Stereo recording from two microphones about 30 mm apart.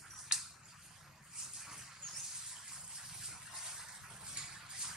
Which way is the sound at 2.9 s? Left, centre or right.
Centre.